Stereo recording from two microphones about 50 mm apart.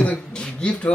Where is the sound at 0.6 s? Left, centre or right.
Left.